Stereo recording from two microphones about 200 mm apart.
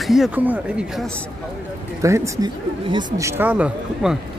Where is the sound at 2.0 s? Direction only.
15° right (ahead or behind).